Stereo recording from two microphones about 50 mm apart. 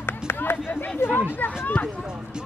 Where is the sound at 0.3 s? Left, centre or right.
Left.